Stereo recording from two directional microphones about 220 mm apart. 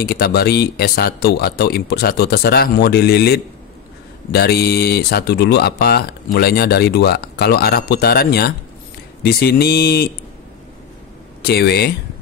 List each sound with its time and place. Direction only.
0.0 s speech: 45° left (ahead or behind)
11.4 s speech: 50° left (ahead or behind)